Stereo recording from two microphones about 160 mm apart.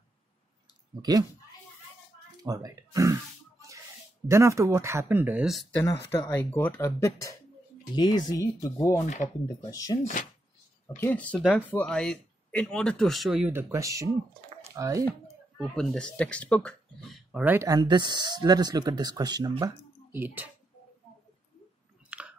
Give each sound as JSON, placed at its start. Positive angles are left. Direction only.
{"t": 2.4, "sound": "speech", "side_deg": -20}
{"t": 4.3, "sound": "speech", "side_deg": -20}
{"t": 5.9, "sound": "speech", "side_deg": 20}
{"t": 9.0, "sound": "speech", "side_deg": 50}
{"t": 9.7, "sound": "speech", "side_deg": 20}
{"t": 11.0, "sound": "speech", "side_deg": 10}
{"t": 13.5, "sound": "speech", "side_deg": -15}
{"t": 15.5, "sound": "speech", "side_deg": 5}
{"t": 17.6, "sound": "speech", "side_deg": -25}
{"t": 20.1, "sound": "speech", "side_deg": -10}
{"t": 22.1, "sound": "chewing", "side_deg": -10}